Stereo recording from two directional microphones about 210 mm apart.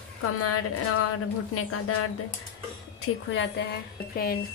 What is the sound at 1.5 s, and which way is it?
Speech, 90° left.